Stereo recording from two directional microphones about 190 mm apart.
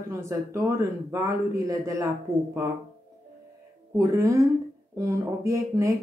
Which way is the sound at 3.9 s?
15° right (ahead or behind).